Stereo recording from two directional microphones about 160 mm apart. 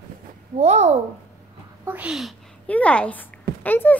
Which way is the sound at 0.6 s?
45° right (ahead or behind).